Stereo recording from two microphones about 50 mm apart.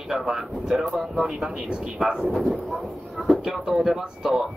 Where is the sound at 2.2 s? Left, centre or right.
Centre.